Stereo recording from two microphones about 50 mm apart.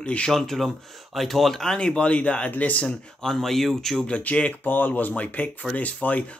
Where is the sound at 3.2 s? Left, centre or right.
Centre.